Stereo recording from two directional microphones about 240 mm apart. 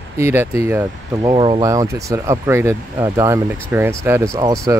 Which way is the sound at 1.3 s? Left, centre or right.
Right.